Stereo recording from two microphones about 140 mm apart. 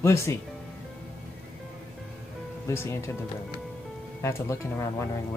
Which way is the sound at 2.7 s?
20° left (ahead or behind).